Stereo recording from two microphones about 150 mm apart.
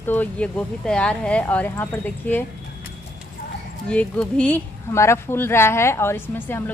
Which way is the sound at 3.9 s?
10° left (ahead or behind).